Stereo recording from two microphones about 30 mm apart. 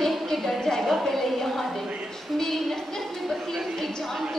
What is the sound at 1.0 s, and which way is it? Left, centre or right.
A woman's voice, centre.